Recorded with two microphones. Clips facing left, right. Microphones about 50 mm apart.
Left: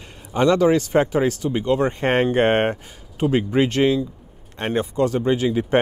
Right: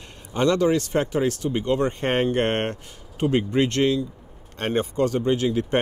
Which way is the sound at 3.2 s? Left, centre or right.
Centre.